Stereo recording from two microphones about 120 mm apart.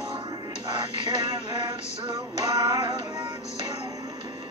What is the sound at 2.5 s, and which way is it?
Music, 35° right (ahead or behind).